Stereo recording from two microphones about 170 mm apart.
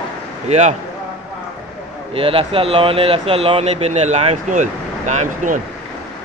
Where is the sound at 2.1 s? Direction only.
35° right (ahead or behind).